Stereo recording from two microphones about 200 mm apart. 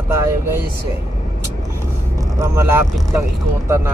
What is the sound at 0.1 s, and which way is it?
Speech, 10° right (ahead or behind).